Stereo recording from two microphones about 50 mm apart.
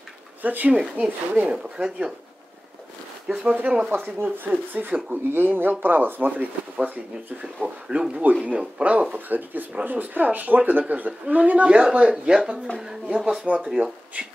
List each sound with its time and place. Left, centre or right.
0.4 s speech: right
0.7 s speech: centre
3.5 s speech: right
3.9 s speech: right
4.5 s speech: right
5.3 s speech: right
7.6 s speech: right
9.1 s speech: right; by 13.5 s centre
14.2 s speech: right